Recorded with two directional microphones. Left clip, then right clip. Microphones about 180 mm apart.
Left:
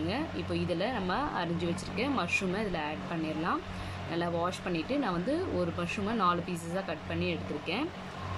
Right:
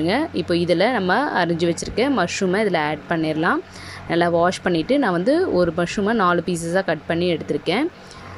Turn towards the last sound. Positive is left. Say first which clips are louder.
# right 13 dB
turn(degrees=-50)  # may be behind; listen again after turning